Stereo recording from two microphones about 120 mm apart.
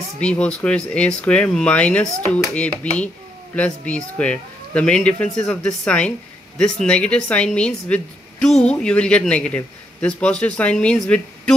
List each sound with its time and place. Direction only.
0.2 s a woman's voice: 10° left (ahead or behind)